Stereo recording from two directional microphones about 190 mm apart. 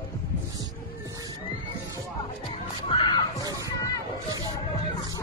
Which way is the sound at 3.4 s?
15° right (ahead or behind).